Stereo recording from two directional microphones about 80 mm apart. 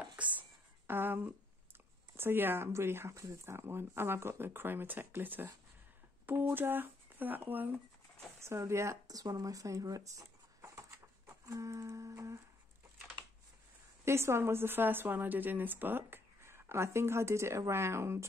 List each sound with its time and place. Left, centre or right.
0.1 s speech: centre
8.4 s speech: right
14.0 s speech: right